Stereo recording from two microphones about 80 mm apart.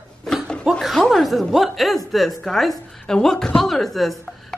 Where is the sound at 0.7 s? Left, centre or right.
Centre.